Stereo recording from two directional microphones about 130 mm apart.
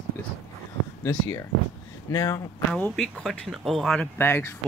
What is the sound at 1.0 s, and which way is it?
Speech, 20° left (ahead or behind).